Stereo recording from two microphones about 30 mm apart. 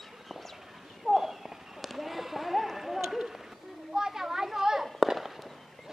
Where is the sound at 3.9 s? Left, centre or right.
Centre.